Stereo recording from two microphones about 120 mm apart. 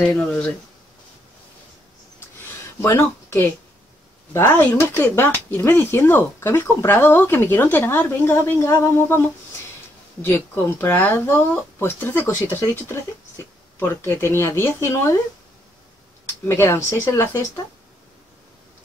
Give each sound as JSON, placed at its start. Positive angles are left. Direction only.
{"t": 0.0, "sound": "speech", "side_deg": 10}
{"t": 2.8, "sound": "speech", "side_deg": 15}
{"t": 10.8, "sound": "speech", "side_deg": 15}
{"t": 16.6, "sound": "speech", "side_deg": 20}